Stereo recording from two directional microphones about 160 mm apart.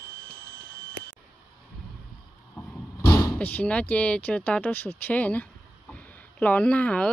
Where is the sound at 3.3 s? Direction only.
10° left (ahead or behind).